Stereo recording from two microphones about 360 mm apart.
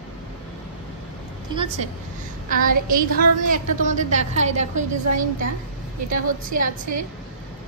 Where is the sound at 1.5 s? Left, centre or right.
Centre.